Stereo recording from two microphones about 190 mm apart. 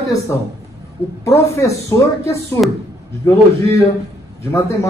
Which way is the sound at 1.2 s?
15° left (ahead or behind).